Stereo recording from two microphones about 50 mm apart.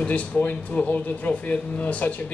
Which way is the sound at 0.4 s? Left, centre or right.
Left.